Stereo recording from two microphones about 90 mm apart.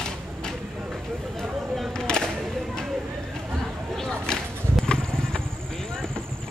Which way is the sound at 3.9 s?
5° left (ahead or behind).